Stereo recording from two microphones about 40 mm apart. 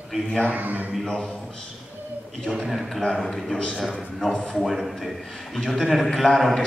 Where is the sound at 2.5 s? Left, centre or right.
Centre.